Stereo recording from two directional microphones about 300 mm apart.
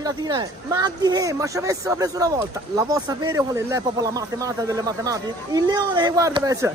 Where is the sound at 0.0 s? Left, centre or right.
Centre.